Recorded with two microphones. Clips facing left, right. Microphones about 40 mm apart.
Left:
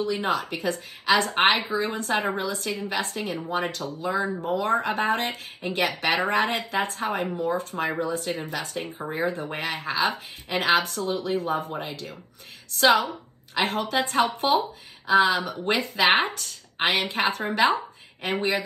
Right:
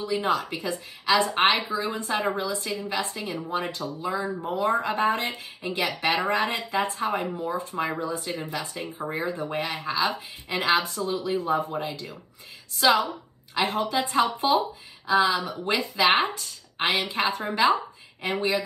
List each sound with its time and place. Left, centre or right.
0.0 s a woman's voice: left
10.8 s a woman's voice: left
15.0 s speech: left